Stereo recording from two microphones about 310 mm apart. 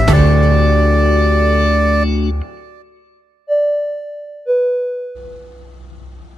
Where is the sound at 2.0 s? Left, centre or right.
Right.